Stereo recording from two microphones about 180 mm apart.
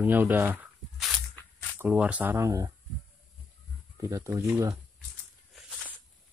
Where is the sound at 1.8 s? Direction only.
5° right (ahead or behind).